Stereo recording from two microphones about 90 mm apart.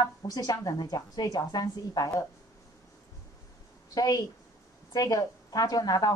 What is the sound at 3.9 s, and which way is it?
Speech, 45° left (ahead or behind).